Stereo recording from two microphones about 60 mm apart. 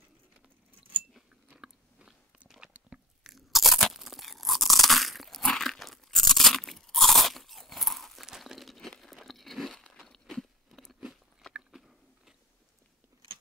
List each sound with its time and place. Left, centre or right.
1.5 s biting: centre
3.3 s crunch: centre
11.5 s biting: centre